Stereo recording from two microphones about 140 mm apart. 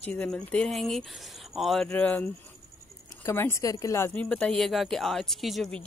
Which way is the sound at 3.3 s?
20° left (ahead or behind).